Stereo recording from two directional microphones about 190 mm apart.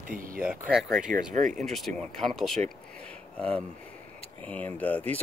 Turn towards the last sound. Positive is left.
turn(degrees=10)  # may be behind; listen again after turning